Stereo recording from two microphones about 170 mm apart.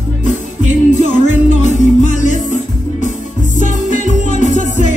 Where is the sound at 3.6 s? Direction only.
45° left (ahead or behind).